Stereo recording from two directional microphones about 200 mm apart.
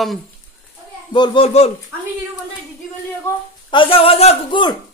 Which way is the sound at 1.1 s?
25° left (ahead or behind).